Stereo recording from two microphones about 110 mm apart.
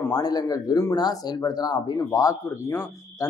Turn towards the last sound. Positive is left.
turn(degrees=30)  # may be behind; listen again after turning